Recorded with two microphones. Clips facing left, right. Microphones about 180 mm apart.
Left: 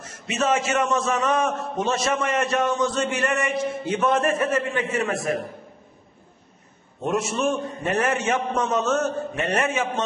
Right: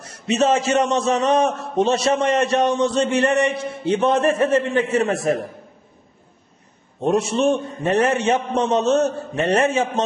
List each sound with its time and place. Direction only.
0.0 s a man's voice: 35° right (ahead or behind)
7.0 s a man's voice: 30° right (ahead or behind)